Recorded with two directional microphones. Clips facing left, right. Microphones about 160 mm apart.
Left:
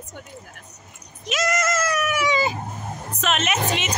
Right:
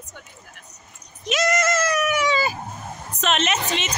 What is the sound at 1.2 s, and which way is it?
A woman's voice, 5° left (ahead or behind).